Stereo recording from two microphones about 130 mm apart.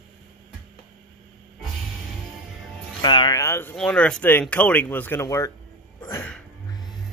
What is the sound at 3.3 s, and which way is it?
Speech, 20° left (ahead or behind).